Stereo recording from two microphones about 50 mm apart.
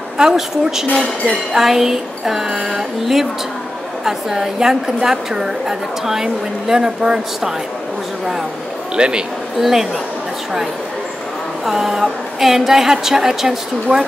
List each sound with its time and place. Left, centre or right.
0.2 s a woman's voice: centre
0.9 s speech: centre
1.5 s a woman's voice: centre
8.9 s a woman's voice: centre
9.6 s a woman's voice: centre
11.6 s a woman's voice: centre
13.9 s speech: right